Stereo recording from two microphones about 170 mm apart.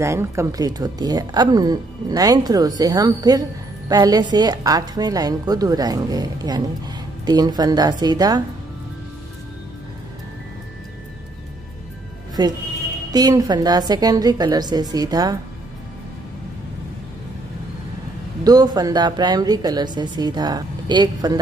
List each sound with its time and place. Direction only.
0.0 s a woman's voice: 15° right (ahead or behind)
12.4 s a woman's voice: 25° right (ahead or behind)
18.4 s a woman's voice: 25° right (ahead or behind)